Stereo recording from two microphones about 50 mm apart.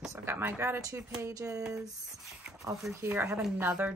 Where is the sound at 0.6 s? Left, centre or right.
Right.